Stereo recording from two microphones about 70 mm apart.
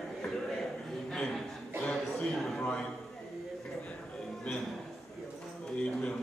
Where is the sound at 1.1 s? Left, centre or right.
Centre.